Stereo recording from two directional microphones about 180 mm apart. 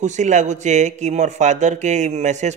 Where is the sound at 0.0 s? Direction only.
40° right (ahead or behind).